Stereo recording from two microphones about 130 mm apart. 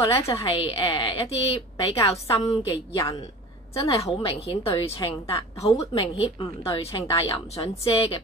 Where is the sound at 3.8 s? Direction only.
50° left (ahead or behind).